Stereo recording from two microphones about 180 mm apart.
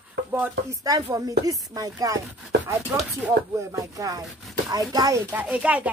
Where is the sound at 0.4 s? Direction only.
20° right (ahead or behind).